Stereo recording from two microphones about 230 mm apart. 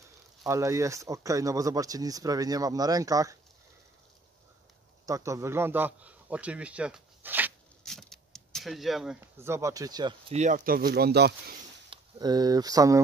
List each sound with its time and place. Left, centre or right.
0.5 s speech: centre
5.0 s a man's voice: centre
7.8 s a sound: centre
10.3 s speech: right
11.9 s speech: centre